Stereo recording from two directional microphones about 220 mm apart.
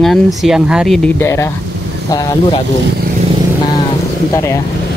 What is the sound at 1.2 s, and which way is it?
Speech, 15° left (ahead or behind).